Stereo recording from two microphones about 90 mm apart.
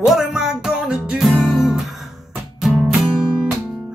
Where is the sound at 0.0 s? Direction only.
5° right (ahead or behind).